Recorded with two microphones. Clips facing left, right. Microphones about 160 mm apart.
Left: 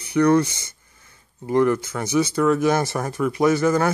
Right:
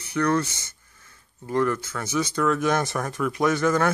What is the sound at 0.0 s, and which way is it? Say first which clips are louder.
A man's voice: left 6 dB; 15° left (ahead or behind).